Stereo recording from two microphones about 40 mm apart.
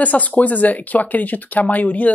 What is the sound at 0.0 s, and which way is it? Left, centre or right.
Speech, left.